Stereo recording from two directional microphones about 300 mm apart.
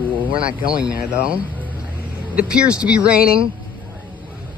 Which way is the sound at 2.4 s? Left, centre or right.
Centre.